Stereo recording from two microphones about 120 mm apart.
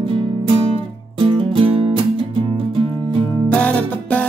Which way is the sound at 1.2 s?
50° right (ahead or behind).